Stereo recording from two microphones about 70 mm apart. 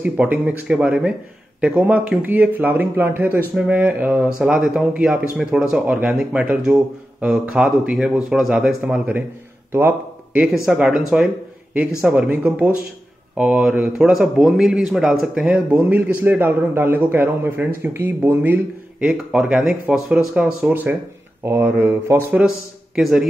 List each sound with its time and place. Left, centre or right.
0.0 s a man's voice: right
3.5 s speech: centre
9.7 s speech: right
10.7 s a man's voice: centre
15.8 s a man's voice: right
18.9 s a man's voice: centre
21.5 s speech: right
22.9 s speech: centre